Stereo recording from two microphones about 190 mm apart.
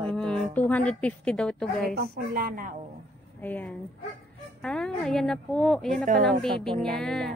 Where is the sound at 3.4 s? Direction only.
10° left (ahead or behind).